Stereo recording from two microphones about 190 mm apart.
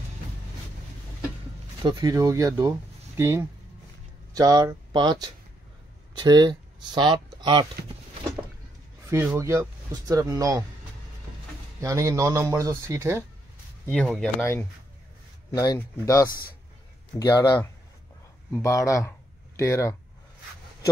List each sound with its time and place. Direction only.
1.8 s speech: 20° right (ahead or behind)
9.1 s speech: 10° right (ahead or behind)
11.8 s speech: 15° right (ahead or behind)
13.9 s speech: 5° right (ahead or behind)
14.4 s speech: 10° left (ahead or behind)
17.3 s speech: 20° left (ahead or behind)